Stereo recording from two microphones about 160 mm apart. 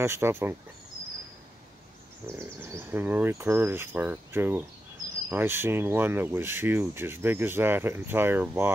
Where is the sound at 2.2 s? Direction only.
15° right (ahead or behind).